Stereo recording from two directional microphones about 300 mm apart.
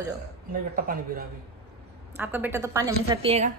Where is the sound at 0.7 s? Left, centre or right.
Right.